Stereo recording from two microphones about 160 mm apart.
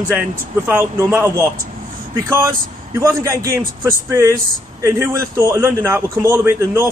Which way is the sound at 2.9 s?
20° right (ahead or behind).